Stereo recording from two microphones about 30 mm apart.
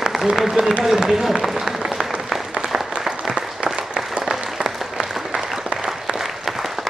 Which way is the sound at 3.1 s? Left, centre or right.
Right.